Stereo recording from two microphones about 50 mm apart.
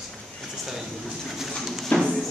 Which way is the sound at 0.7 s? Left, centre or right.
Centre.